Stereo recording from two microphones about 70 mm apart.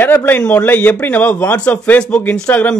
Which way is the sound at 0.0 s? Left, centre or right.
Left.